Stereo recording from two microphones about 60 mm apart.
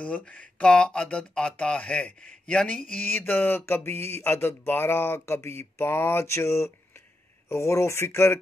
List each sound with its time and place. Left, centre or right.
0.0 s speech: left